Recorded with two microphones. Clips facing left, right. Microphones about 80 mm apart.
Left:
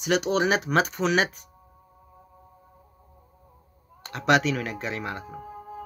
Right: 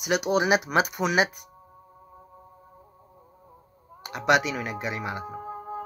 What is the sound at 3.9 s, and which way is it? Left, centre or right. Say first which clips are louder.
Speech: even; centre.